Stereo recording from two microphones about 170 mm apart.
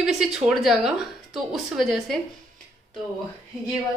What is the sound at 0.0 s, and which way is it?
A woman's voice, 5° right (ahead or behind).